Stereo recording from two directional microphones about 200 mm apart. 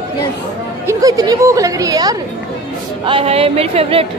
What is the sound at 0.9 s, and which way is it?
Speech, 15° right (ahead or behind).